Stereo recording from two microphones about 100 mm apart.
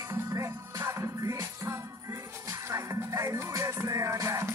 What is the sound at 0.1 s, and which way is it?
Music, 30° right (ahead or behind).